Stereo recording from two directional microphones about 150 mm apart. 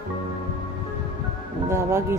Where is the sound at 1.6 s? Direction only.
15° right (ahead or behind).